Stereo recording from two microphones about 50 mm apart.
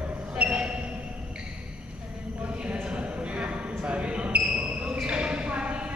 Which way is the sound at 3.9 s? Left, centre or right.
Right.